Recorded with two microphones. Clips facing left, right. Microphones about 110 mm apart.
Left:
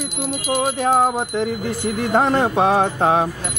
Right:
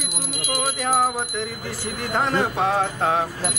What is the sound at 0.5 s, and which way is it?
Music, 35° left (ahead or behind).